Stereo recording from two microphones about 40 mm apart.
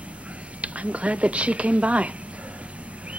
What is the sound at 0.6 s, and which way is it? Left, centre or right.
A man's voice, right.